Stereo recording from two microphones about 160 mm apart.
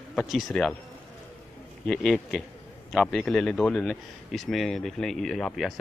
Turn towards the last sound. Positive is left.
turn(degrees=0)  # may be behind; listen again after turning